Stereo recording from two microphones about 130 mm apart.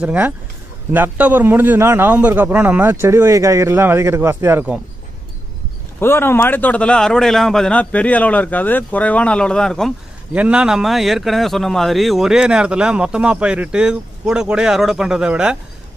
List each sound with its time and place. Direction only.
0.0 s a man's voice: 10° right (ahead or behind)
5.9 s a man's voice: 20° left (ahead or behind)
10.3 s speech: 10° right (ahead or behind)